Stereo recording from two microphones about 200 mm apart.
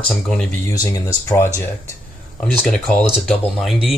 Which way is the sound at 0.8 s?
20° left (ahead or behind).